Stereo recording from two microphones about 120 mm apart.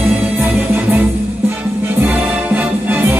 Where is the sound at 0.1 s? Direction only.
15° right (ahead or behind).